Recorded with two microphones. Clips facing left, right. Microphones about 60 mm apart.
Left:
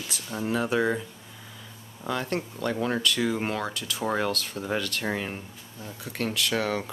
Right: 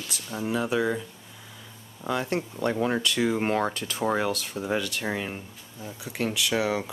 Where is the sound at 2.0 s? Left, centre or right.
Centre.